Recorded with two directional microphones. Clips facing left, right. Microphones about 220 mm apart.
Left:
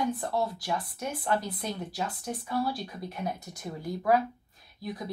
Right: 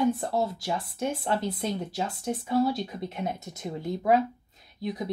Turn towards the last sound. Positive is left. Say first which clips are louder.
# right 5 dB
turn(degrees=-20)  # may be behind; listen again after turning